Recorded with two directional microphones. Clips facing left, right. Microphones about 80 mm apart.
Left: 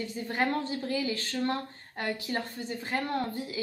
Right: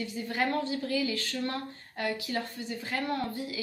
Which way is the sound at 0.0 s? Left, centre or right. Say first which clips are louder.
Left 1 dB; left.